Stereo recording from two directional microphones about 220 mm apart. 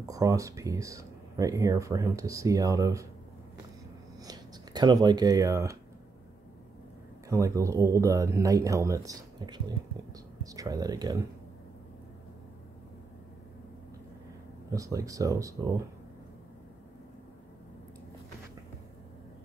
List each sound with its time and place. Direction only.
0.1 s speech: 15° right (ahead or behind)
4.2 s speech: 20° right (ahead or behind)
7.2 s speech: 15° right (ahead or behind)
14.7 s speech: 15° right (ahead or behind)